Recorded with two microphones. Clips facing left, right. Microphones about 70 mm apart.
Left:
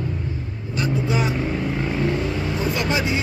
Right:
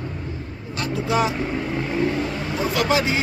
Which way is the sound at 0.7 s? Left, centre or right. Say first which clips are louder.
Right 1 dB; right.